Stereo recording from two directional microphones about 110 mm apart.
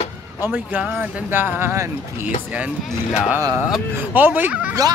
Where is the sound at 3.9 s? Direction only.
15° right (ahead or behind).